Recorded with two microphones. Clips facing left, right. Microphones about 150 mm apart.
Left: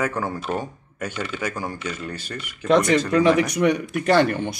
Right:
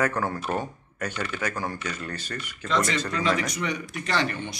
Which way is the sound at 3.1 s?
60° left (ahead or behind).